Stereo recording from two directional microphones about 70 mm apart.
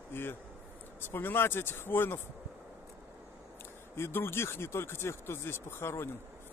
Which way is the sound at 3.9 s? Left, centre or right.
Left.